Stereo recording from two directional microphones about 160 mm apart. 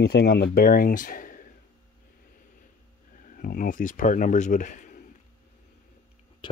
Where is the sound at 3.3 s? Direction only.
60° left (ahead or behind).